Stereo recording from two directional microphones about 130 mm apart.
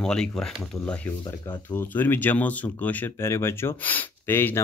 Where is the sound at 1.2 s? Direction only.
35° left (ahead or behind).